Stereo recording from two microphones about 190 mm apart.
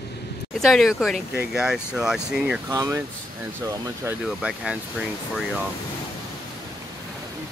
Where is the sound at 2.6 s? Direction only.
15° right (ahead or behind).